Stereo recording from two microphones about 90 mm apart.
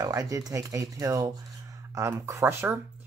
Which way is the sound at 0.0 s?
40° right (ahead or behind).